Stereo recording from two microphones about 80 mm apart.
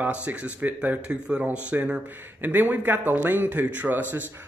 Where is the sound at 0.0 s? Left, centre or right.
Centre.